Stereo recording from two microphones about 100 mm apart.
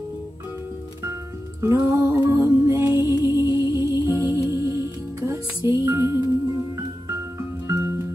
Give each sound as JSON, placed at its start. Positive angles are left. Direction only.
{"t": 1.6, "sound": "music", "side_deg": -35}
{"t": 2.0, "sound": "music", "side_deg": -20}